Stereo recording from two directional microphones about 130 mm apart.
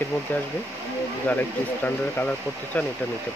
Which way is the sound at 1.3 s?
10° left (ahead or behind).